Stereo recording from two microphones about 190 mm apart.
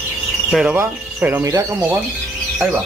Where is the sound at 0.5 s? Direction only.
5° right (ahead or behind).